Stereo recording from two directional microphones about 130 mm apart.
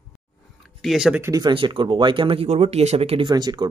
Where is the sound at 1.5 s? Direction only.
40° right (ahead or behind).